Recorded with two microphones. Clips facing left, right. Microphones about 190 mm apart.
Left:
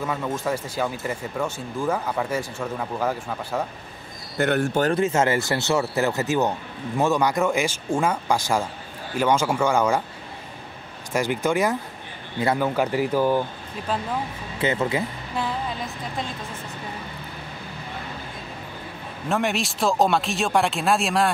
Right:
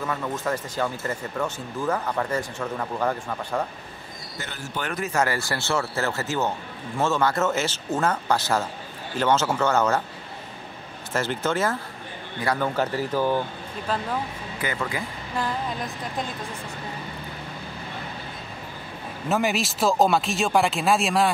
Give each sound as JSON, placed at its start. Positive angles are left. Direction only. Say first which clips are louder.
{"t": 0.0, "sound": "speech", "louder": "left 2 dB", "side_deg": 10}
{"t": 4.4, "sound": "speech", "louder": "left 16 dB", "side_deg": 60}
{"t": 4.9, "sound": "speech", "louder": "left 4 dB", "side_deg": 25}
{"t": 11.1, "sound": "speech", "louder": "left 3 dB", "side_deg": 15}
{"t": 14.6, "sound": "speech", "louder": "left 6 dB", "side_deg": 25}
{"t": 19.2, "sound": "speech", "louder": "even", "side_deg": 0}